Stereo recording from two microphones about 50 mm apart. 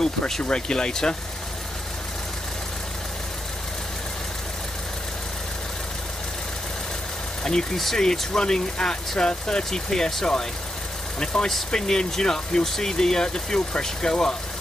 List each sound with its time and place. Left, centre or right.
0.4 s speech: centre
7.4 s speech: centre